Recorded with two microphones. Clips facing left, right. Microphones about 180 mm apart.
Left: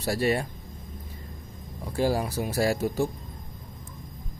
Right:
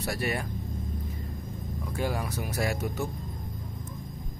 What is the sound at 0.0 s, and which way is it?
Speech, 30° left (ahead or behind).